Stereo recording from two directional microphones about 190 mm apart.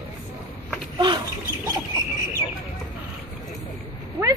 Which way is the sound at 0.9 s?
25° right (ahead or behind).